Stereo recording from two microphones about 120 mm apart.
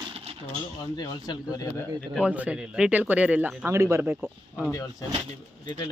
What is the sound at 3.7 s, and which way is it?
Speech, 25° right (ahead or behind).